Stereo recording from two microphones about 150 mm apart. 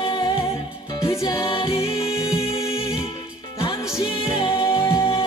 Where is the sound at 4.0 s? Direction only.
35° left (ahead or behind).